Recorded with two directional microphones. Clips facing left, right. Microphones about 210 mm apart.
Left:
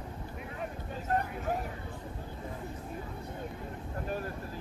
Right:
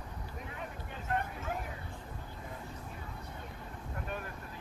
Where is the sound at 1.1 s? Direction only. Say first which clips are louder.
Left 4 dB; 40° left (ahead or behind).